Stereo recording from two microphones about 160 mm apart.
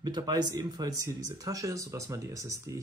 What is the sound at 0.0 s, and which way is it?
Speech, 25° right (ahead or behind).